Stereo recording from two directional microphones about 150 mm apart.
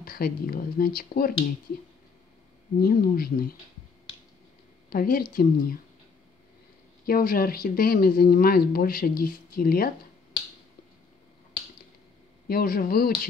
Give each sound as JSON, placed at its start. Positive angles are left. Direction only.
{"t": 0.0, "sound": "a woman's voice", "side_deg": 85}
{"t": 2.8, "sound": "a woman's voice", "side_deg": 80}
{"t": 4.8, "sound": "a woman's voice", "side_deg": 80}
{"t": 7.1, "sound": "a woman's voice", "side_deg": 80}
{"t": 12.4, "sound": "a woman's voice", "side_deg": 80}